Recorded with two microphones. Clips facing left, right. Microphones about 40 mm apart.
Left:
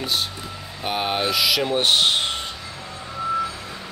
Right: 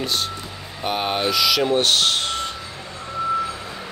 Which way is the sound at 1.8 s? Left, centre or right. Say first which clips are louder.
Even; centre.